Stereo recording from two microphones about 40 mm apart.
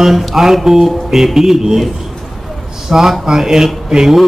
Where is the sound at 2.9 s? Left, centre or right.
Centre.